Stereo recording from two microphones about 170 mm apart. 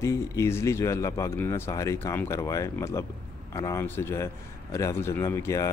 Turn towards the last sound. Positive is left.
turn(degrees=15)  # may be behind; listen again after turning